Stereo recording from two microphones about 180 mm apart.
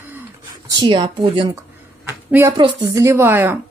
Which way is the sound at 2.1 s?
15° right (ahead or behind).